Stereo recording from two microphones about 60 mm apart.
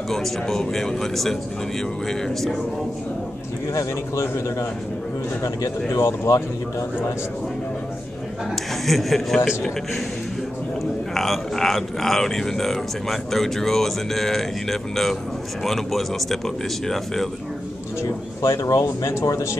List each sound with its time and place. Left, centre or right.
0.1 s speech: centre
3.7 s a man's voice: left
5.9 s speech: left
8.5 s speech: centre
10.8 s speech: centre
18.5 s speech: left